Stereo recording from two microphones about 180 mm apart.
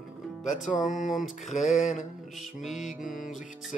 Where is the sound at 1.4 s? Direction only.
40° left (ahead or behind).